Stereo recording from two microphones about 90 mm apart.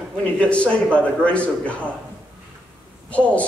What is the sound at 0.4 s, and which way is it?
A man's voice, 15° left (ahead or behind).